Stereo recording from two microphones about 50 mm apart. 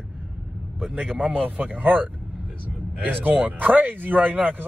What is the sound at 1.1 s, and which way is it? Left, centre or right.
A man's voice, right.